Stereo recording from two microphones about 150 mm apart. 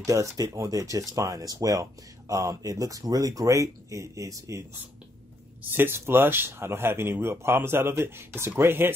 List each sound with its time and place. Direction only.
0.0 s speech: 20° right (ahead or behind)